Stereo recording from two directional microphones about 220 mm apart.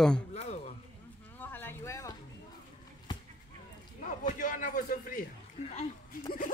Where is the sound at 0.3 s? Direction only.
30° left (ahead or behind).